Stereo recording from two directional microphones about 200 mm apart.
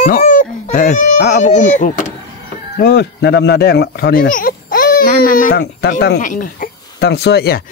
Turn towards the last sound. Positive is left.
turn(degrees=50)  # may be behind; listen again after turning